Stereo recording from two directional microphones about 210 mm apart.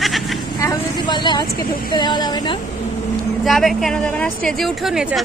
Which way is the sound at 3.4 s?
Centre (ahead or behind).